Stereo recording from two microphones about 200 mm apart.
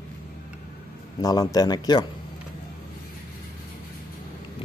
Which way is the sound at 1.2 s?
20° left (ahead or behind).